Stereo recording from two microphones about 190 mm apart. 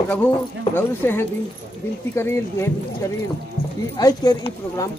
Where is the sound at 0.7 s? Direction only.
10° left (ahead or behind).